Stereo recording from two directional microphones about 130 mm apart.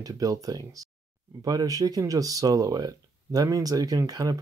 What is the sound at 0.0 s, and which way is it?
Speech, 25° right (ahead or behind).